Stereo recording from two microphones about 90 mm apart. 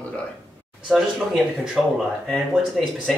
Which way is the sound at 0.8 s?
10° right (ahead or behind).